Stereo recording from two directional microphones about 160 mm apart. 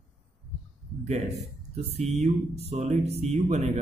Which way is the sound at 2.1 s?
40° right (ahead or behind).